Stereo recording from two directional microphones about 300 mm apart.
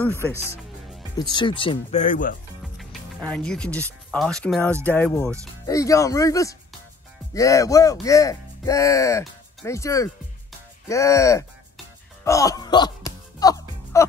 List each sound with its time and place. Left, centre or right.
0.0 s speech: centre; by 2.3 s left
2.8 s speech: centre
12.3 s music: centre